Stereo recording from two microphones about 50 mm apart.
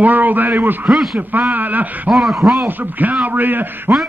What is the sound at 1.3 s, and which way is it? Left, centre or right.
Speech, right.